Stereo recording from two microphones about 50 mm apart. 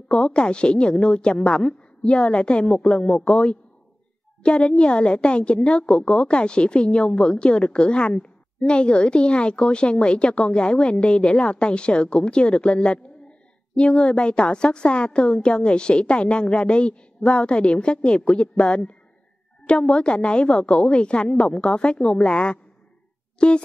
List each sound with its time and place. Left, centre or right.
0.1 s a woman's voice: left